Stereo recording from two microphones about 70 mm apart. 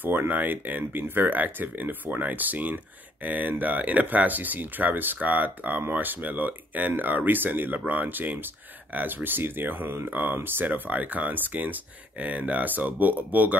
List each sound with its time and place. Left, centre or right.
0.0 s speech: right